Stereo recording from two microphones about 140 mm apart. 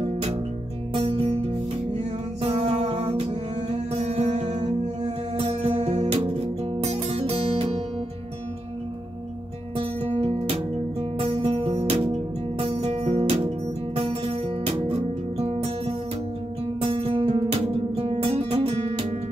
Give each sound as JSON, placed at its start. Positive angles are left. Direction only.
{"t": 0.0, "sound": "music", "side_deg": -45}
{"t": 2.4, "sound": "music", "side_deg": -45}
{"t": 9.8, "sound": "music", "side_deg": -45}
{"t": 16.8, "sound": "music", "side_deg": -45}